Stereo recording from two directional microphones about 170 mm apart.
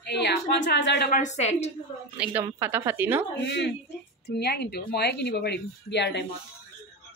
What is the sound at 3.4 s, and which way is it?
Speech, 90° left.